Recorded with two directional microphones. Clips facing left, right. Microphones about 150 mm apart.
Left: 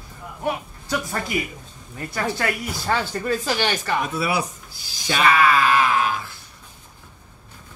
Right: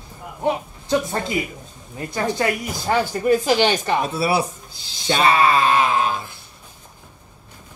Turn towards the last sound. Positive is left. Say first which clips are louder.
# right 1 dB
turn(degrees=-25)  # may be behind; listen again after turning